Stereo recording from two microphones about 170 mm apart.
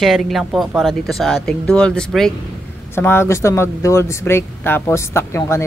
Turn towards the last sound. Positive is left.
turn(degrees=15)  # may be behind; listen again after turning